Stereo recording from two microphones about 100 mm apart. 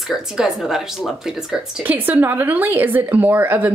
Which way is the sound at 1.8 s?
20° right (ahead or behind).